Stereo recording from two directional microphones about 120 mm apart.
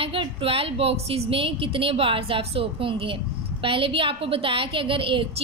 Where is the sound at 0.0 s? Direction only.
50° right (ahead or behind).